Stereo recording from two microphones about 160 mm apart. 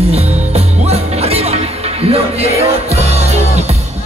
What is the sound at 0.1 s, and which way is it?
Music, 40° right (ahead or behind).